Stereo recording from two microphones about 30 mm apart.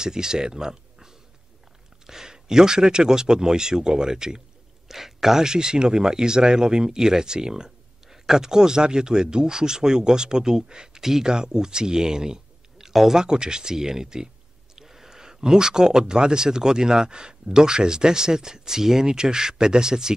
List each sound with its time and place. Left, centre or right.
0.0 s speech: right
4.8 s speech: centre
13.2 s speech: right